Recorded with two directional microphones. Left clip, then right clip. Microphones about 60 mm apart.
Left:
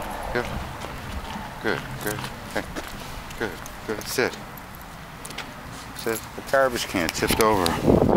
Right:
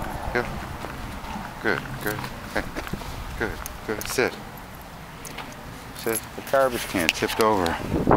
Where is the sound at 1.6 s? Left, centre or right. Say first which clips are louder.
Right 1 dB; centre.